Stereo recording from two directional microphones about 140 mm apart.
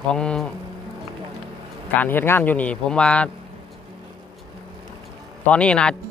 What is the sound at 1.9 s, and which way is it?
Speech, 15° left (ahead or behind).